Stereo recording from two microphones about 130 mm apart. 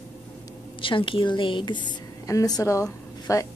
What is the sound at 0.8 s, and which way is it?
A woman's voice, 40° left (ahead or behind).